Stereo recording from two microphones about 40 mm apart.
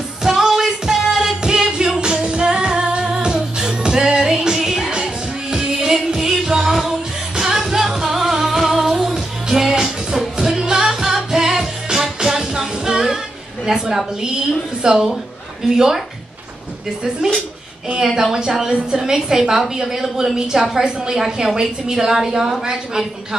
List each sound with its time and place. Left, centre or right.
0.2 s music: centre
13.7 s a woman's voice: centre
18.0 s a woman's voice: centre